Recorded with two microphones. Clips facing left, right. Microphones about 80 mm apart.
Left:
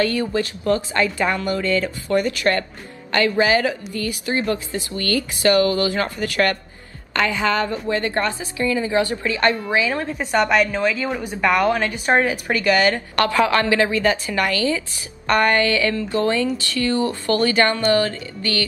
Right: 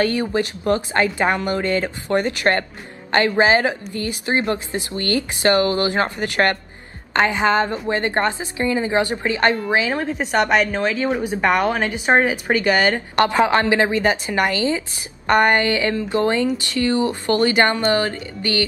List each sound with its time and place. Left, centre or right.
0.0 s a woman's voice: right